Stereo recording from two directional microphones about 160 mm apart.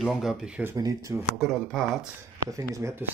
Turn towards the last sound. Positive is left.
turn(degrees=-20)  # may be behind; listen again after turning